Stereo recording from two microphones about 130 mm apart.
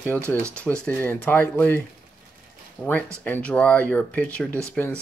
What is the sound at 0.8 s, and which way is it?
Speech, 15° left (ahead or behind).